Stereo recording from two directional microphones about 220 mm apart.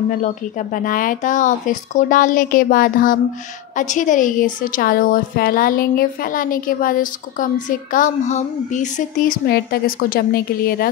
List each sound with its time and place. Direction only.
0.8 s a woman's voice: 40° left (ahead or behind)